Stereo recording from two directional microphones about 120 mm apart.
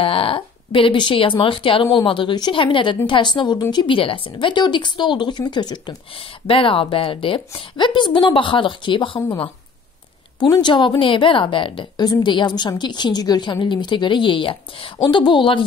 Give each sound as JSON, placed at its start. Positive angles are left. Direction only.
{"t": 0.0, "sound": "a woman's voice", "side_deg": 50}
{"t": 6.1, "sound": "speech", "side_deg": 50}
{"t": 10.4, "sound": "a woman's voice", "side_deg": 40}